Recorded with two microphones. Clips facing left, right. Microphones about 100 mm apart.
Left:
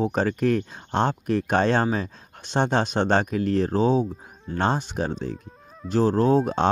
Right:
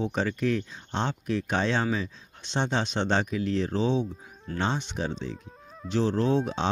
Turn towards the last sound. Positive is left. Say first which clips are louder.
# left 5 dB
turn(degrees=40)  # may be behind; listen again after turning